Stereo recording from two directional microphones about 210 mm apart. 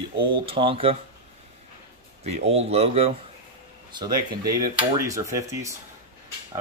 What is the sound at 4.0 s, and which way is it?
Speech, 20° right (ahead or behind).